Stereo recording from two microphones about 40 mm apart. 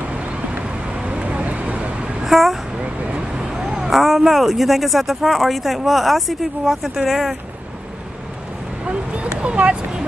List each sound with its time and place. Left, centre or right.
0.1 s vehicle: right
0.5 s vehicle: right
2.2 s a sound: centre
2.8 s vehicle: right
3.5 s speech: centre
8.8 s a sound: right